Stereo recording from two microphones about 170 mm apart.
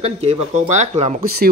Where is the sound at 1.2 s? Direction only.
60° right (ahead or behind).